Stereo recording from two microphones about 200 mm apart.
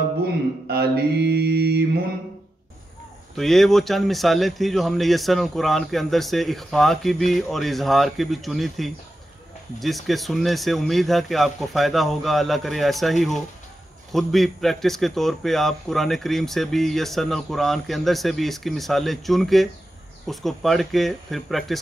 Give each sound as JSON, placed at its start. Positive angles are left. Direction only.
{"t": 0.7, "sound": "mantra", "side_deg": -55}
{"t": 3.3, "sound": "a man's voice", "side_deg": 0}